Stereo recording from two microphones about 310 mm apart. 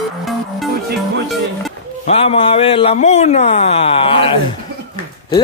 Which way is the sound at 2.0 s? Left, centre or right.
Centre.